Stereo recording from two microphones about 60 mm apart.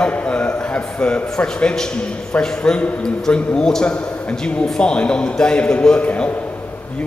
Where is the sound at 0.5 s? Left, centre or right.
Centre.